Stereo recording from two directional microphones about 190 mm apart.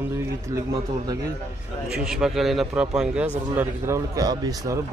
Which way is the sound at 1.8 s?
Centre (ahead or behind).